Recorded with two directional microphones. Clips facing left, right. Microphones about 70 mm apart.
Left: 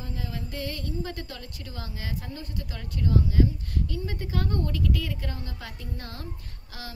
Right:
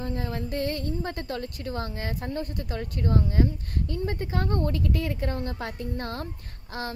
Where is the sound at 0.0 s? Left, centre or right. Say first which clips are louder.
Right 5 dB; right.